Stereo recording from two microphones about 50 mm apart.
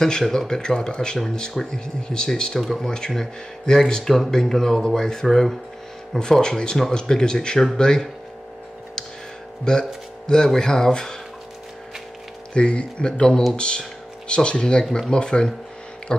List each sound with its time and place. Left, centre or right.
0.0 s speech: centre
9.7 s speech: centre
12.5 s speech: left